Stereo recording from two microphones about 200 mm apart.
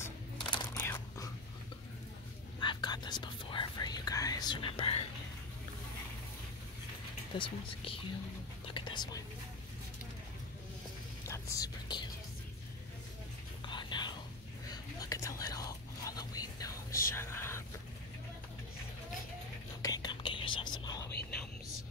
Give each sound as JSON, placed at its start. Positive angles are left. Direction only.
{"t": 0.8, "sound": "whispering", "side_deg": 15}
{"t": 2.6, "sound": "whispering", "side_deg": 20}
{"t": 7.3, "sound": "speech", "side_deg": 25}
{"t": 8.6, "sound": "whispering", "side_deg": 25}
{"t": 11.2, "sound": "whispering", "side_deg": 15}
{"t": 13.7, "sound": "whispering", "side_deg": 20}
{"t": 19.8, "sound": "whispering", "side_deg": 20}